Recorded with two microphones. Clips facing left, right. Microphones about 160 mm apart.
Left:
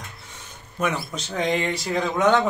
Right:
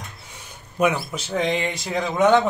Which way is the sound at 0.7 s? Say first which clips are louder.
Right 5 dB; 10° right (ahead or behind).